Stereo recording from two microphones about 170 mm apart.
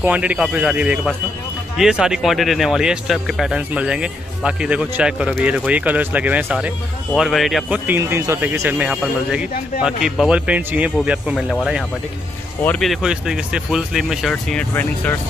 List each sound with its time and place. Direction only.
0.0 s speech: 10° right (ahead or behind)
7.8 s speech: 15° right (ahead or behind)
12.6 s speech: 5° left (ahead or behind)